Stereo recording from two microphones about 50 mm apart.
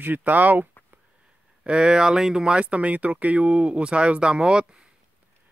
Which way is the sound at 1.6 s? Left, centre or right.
Centre.